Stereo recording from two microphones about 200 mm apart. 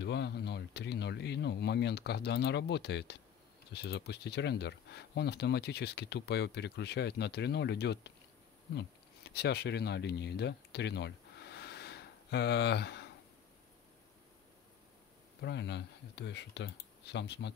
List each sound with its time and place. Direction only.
0.0 s speech: 60° left (ahead or behind)
15.4 s speech: 60° left (ahead or behind)